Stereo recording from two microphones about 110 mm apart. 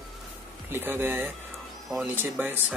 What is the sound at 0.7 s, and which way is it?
Speech, 20° right (ahead or behind).